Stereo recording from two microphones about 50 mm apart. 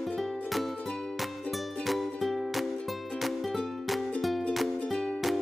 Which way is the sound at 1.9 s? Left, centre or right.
Centre.